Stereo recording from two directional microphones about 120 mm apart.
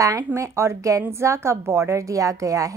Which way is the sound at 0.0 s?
25° right (ahead or behind).